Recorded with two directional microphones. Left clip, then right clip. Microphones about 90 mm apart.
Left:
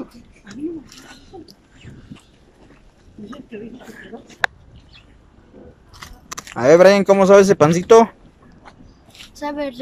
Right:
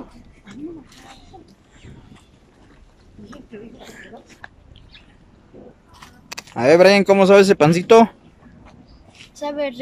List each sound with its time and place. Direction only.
4.1 s a sound: 10° left (ahead or behind)
6.2 s speech: 5° right (ahead or behind)
9.3 s speech: 35° right (ahead or behind)